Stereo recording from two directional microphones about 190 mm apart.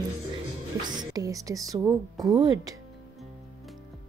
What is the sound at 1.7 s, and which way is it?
A woman's voice, 15° right (ahead or behind).